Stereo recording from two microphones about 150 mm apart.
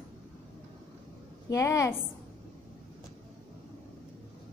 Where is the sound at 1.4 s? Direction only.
20° left (ahead or behind).